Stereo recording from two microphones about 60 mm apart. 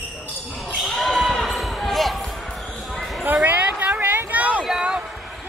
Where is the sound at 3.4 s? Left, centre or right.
Right.